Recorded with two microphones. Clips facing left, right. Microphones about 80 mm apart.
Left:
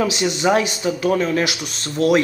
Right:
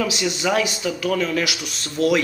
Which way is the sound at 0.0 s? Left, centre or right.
Left.